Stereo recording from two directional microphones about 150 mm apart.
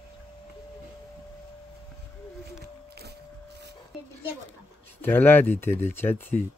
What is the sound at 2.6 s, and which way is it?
Music, 90° right.